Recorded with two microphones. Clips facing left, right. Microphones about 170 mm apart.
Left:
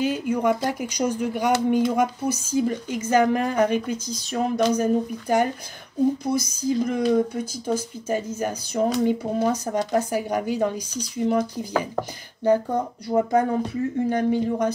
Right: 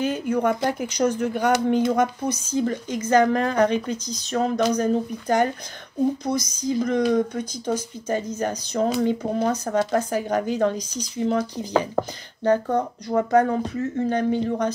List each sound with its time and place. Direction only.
0.0 s a woman's voice: 10° left (ahead or behind)